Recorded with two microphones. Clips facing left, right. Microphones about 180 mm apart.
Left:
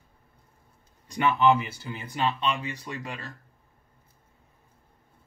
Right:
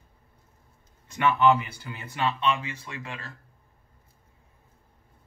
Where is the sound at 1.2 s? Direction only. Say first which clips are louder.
Even; 10° left (ahead or behind).